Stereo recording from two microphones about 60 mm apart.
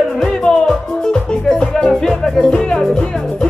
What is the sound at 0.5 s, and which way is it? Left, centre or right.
Music, centre.